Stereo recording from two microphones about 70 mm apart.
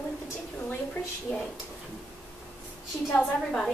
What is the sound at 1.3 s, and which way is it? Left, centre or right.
Speech, centre.